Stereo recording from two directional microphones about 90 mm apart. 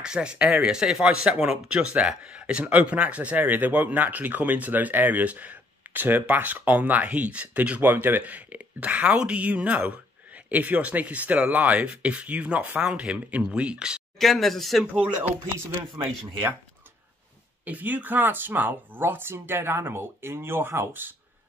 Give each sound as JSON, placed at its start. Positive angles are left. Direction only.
{"t": 0.0, "sound": "speech", "side_deg": -10}
{"t": 14.1, "sound": "speech", "side_deg": 0}
{"t": 17.6, "sound": "speech", "side_deg": -20}